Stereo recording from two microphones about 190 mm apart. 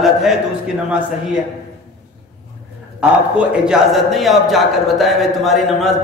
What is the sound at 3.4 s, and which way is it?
A man's voice, 5° right (ahead or behind).